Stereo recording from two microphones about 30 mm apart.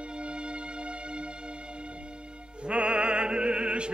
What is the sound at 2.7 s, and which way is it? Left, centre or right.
Opera, right.